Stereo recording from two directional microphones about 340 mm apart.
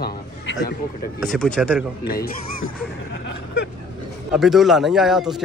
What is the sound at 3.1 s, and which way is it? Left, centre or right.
Vehicle, left.